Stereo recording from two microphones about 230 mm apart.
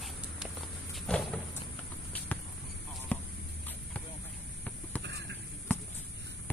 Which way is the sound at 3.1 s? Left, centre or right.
Centre.